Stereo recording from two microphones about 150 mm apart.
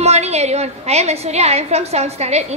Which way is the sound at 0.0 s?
45° right (ahead or behind).